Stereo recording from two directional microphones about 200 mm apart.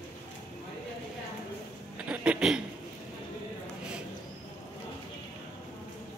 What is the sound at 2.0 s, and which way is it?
Speech, 5° right (ahead or behind).